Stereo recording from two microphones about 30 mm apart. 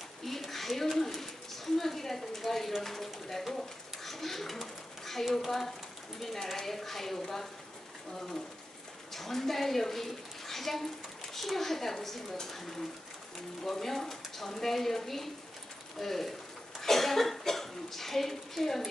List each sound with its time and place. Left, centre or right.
0.2 s a sound: centre
0.9 s speech: centre
9.1 s a child's voice: centre